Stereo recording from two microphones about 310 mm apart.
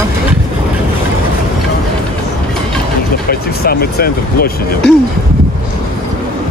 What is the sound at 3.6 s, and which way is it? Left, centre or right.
Speech, left.